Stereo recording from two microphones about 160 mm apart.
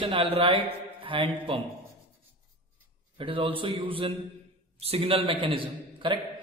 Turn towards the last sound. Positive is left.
turn(degrees=-30)  # may be behind; listen again after turning